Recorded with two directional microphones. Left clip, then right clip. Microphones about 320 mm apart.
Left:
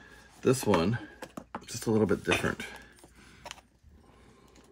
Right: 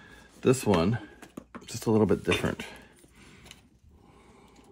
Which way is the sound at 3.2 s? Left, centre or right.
Centre.